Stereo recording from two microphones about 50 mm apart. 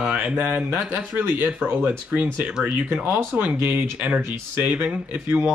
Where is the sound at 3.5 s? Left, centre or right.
Right.